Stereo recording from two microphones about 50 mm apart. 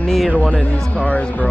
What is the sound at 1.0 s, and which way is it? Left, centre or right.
Speech, left.